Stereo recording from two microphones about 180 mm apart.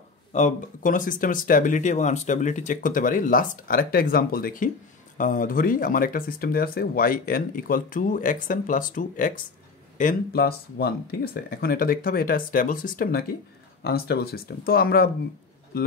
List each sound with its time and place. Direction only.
0.3 s speech: 40° left (ahead or behind)